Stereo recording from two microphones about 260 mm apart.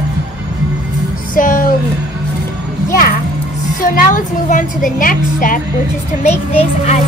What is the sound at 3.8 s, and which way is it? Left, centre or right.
A woman's voice, left.